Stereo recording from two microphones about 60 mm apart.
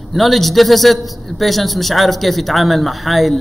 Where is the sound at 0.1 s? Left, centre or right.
Centre.